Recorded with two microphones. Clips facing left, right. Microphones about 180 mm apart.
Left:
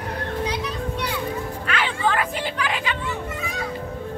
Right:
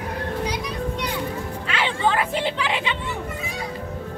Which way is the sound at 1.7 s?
25° right (ahead or behind).